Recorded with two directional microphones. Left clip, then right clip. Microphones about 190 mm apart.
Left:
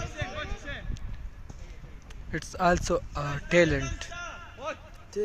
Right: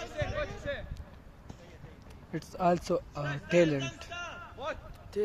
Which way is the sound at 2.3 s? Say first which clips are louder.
Left 3 dB; 10° left (ahead or behind).